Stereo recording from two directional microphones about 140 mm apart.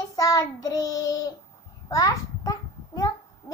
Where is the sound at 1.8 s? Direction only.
25° left (ahead or behind).